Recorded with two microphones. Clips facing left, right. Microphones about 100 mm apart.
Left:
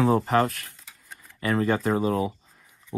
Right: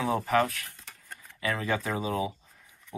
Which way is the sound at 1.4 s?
45° left (ahead or behind).